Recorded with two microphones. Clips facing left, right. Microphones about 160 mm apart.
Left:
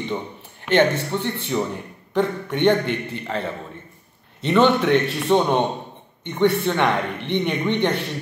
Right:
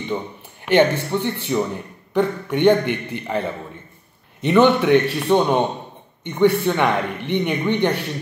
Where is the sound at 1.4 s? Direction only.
Centre (ahead or behind).